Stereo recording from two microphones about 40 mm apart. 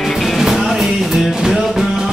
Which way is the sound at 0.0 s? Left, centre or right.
Centre.